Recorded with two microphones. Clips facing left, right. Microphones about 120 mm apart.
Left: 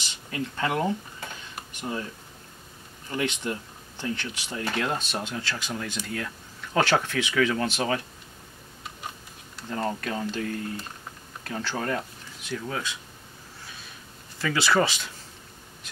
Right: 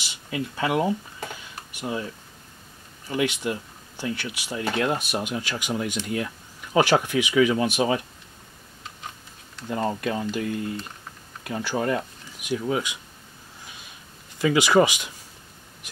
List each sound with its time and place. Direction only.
0.0 s speech: 10° right (ahead or behind)
3.1 s speech: 10° right (ahead or behind)
9.7 s speech: 15° right (ahead or behind)
14.4 s speech: 15° right (ahead or behind)